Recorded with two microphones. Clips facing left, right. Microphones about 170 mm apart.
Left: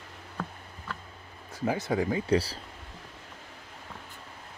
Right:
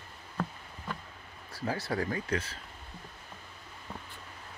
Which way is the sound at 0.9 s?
20° right (ahead or behind).